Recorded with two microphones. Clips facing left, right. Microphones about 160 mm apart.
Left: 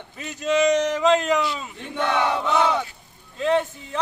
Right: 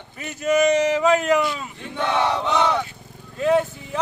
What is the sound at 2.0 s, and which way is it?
Chant, 25° right (ahead or behind).